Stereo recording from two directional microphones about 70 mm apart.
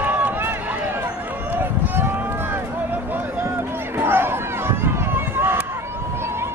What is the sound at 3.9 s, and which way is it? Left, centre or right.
Run, right.